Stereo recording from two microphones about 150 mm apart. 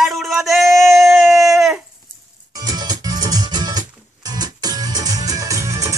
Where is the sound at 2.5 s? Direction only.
25° right (ahead or behind).